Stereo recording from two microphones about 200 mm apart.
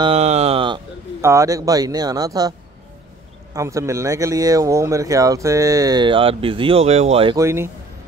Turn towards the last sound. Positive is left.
turn(degrees=-15)  # may be behind; listen again after turning